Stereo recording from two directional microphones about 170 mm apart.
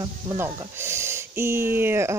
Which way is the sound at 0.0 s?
15° right (ahead or behind).